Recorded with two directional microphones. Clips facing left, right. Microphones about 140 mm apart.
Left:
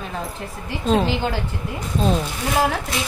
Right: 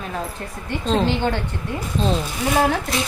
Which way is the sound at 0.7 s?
5° left (ahead or behind).